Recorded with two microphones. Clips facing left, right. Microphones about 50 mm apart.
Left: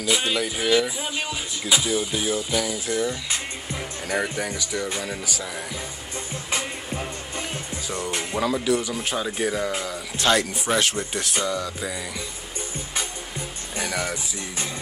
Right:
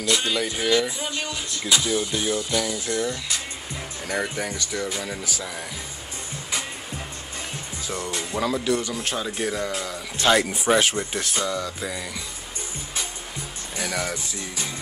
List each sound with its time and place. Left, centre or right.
0.0 s speech: centre
7.8 s speech: centre
8.1 s speech: left
8.4 s speech: centre
13.7 s speech: centre